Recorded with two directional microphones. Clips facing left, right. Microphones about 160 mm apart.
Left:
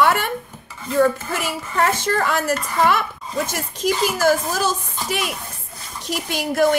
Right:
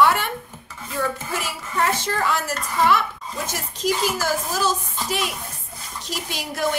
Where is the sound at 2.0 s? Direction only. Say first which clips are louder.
Left 3 dB; 50° left (ahead or behind).